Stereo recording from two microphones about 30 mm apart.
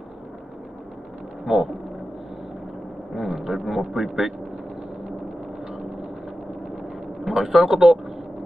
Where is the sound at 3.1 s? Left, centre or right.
Centre.